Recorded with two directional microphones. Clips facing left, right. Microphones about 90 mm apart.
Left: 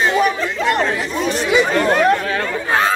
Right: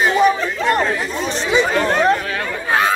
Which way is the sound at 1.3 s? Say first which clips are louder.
Left 1 dB; 30° right (ahead or behind).